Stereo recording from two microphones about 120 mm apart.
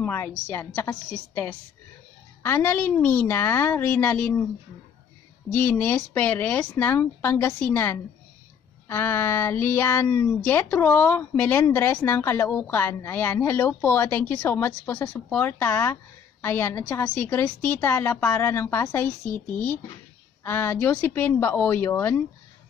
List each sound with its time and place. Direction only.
0.0 s a woman's voice: 20° left (ahead or behind)
5.5 s a woman's voice: 15° left (ahead or behind)